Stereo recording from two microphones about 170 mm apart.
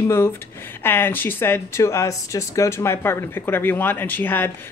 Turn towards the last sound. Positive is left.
turn(degrees=10)  # may be behind; listen again after turning